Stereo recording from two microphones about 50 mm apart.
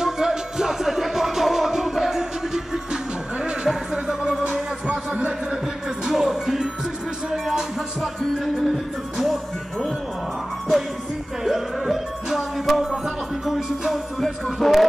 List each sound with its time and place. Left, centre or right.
0.0 s music: centre
4.8 s music: right
6.0 s music: centre
8.7 s music: centre
11.4 s music: centre